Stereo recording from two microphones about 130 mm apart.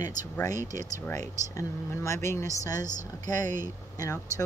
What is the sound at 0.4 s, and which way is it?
Speech, 25° left (ahead or behind).